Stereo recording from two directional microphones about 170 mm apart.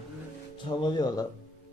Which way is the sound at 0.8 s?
25° left (ahead or behind).